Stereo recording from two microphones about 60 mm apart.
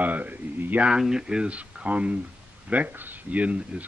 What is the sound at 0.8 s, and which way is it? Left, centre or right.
Speech, centre.